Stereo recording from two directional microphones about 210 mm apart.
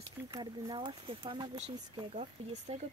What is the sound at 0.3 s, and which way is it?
Speech, 20° right (ahead or behind).